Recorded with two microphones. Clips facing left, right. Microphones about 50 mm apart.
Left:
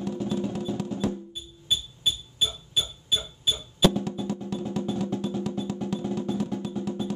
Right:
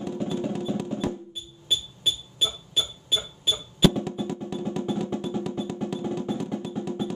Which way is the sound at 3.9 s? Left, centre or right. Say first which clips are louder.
Right 1 dB; centre.